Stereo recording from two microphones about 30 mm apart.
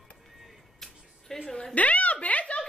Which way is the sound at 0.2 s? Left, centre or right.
Centre.